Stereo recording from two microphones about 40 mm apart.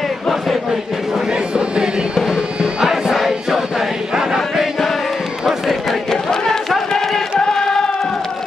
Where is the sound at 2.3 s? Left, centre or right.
Centre.